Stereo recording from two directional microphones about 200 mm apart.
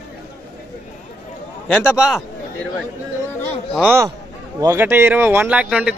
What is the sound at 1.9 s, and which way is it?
Speech, 5° right (ahead or behind).